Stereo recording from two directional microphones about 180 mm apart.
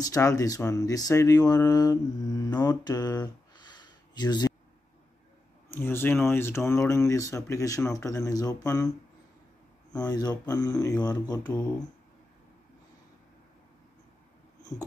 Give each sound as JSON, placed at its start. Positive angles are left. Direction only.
{"t": 0.0, "sound": "speech", "side_deg": 20}
{"t": 5.7, "sound": "speech", "side_deg": 10}
{"t": 10.0, "sound": "speech", "side_deg": 20}
{"t": 14.7, "sound": "speech", "side_deg": 20}